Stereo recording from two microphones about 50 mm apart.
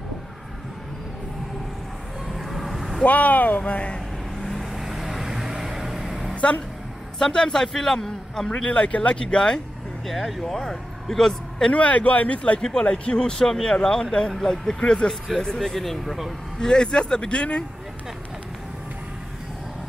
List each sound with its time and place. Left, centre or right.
2.2 s vehicle: centre
3.1 s speech: left
4.4 s vehicle: centre
6.3 s a sound: left
7.2 s a man's voice: centre
8.6 s speech: left
10.0 s speech: centre
11.7 s speech: left
12.5 s a man's voice: centre
16.5 s speech: centre